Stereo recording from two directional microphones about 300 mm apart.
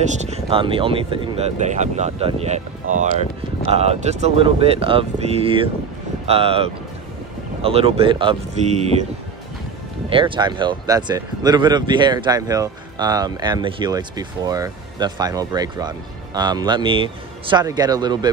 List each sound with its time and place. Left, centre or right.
0.0 s speech: right
10.0 s speech: centre